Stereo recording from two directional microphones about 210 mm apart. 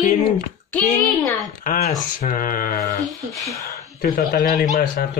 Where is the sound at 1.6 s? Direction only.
40° left (ahead or behind).